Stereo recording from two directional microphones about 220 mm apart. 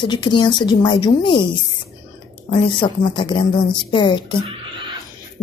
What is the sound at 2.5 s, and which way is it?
Speech, 20° left (ahead or behind).